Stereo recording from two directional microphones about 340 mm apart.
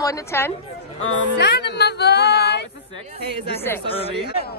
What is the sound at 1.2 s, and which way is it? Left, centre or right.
Speech, left.